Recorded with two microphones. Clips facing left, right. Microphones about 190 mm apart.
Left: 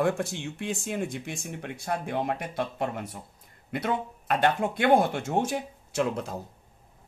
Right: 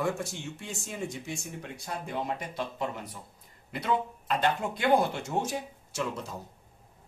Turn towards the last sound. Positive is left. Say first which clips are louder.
# left 6 dB
turn(degrees=55)  # may be behind; listen again after turning